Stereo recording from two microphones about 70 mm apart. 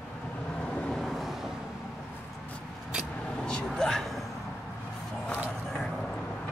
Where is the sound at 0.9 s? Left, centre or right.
Centre.